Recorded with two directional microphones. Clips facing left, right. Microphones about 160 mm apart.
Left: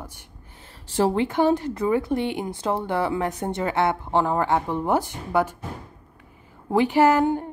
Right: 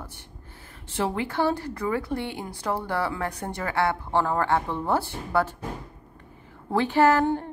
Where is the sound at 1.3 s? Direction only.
20° left (ahead or behind).